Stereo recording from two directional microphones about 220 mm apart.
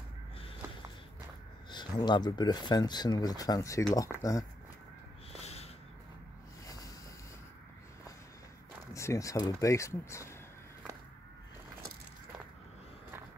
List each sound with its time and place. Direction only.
1.7 s speech: 20° left (ahead or behind)
5.3 s snort: 30° left (ahead or behind)
8.9 s speech: 15° left (ahead or behind)